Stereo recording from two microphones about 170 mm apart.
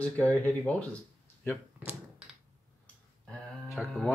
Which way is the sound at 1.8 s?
10° right (ahead or behind).